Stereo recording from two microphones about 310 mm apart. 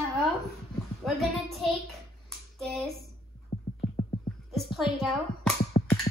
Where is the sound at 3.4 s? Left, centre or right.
Left.